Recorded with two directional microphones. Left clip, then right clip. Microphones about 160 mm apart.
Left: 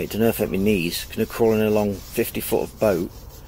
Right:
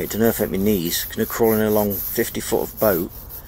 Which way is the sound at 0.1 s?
15° right (ahead or behind).